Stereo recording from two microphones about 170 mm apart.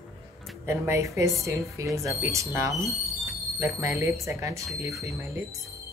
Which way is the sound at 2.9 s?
Centre (ahead or behind).